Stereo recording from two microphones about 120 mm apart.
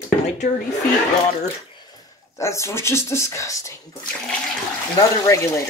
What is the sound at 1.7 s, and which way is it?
Bathtub, 35° left (ahead or behind).